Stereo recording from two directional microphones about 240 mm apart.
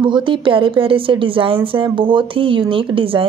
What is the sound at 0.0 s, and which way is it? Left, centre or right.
Speech, centre.